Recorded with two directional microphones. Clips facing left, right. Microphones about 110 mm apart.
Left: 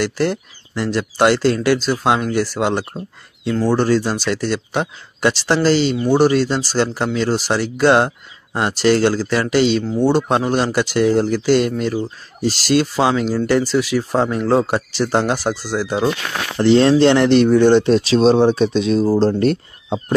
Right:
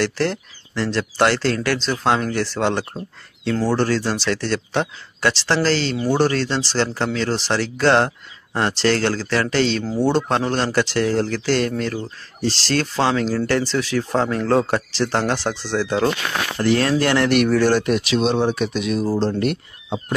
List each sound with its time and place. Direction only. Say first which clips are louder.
0.0 s speech: left 2 dB; 15° left (ahead or behind)
16.5 s speech: left 7 dB; 25° left (ahead or behind)